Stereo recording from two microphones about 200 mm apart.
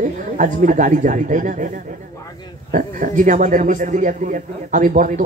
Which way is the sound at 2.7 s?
40° right (ahead or behind).